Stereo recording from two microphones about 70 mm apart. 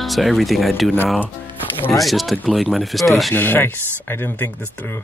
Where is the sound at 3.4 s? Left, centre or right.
Left.